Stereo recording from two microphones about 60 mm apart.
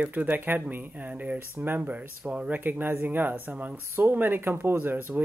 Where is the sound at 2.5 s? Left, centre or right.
Right.